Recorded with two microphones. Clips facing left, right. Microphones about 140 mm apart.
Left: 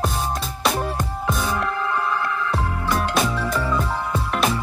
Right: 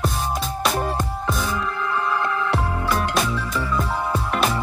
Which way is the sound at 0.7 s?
Centre (ahead or behind).